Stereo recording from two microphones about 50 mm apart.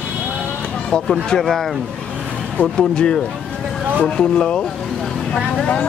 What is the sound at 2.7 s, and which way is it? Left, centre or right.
Speech, centre.